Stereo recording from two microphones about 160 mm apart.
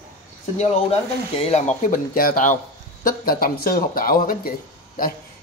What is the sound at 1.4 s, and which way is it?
Speech, 40° left (ahead or behind).